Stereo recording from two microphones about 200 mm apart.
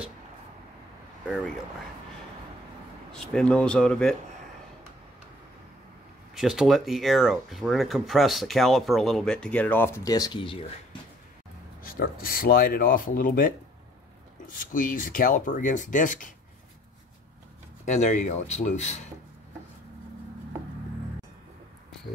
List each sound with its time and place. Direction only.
3.1 s speech: 5° left (ahead or behind)
6.3 s speech: centre (ahead or behind); by 11.0 s 25° left (ahead or behind)
11.8 s speech: 45° left (ahead or behind)
14.5 s speech: 40° left (ahead or behind)
17.8 s speech: 35° left (ahead or behind)